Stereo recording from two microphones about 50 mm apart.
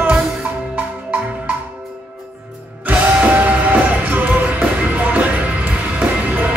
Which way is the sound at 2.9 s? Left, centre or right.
Right.